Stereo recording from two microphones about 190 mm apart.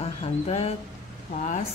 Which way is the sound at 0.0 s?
30° left (ahead or behind).